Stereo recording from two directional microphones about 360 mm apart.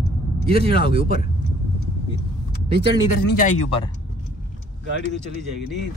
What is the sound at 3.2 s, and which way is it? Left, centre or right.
Speech, left.